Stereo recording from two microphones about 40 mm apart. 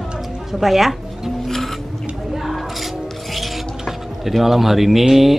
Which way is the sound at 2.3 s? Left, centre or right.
Centre.